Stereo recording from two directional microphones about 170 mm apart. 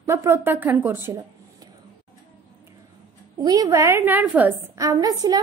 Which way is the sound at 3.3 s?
20° right (ahead or behind).